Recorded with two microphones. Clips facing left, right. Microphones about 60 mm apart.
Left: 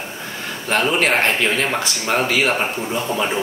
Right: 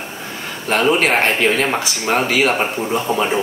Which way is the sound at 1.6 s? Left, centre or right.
Centre.